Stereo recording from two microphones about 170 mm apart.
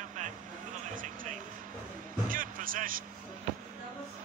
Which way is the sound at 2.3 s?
55° right (ahead or behind).